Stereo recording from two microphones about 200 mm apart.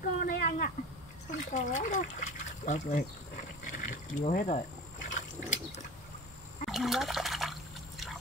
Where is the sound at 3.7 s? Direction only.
40° left (ahead or behind).